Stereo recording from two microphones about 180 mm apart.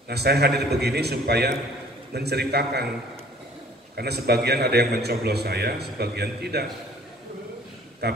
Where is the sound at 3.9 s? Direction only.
65° right (ahead or behind).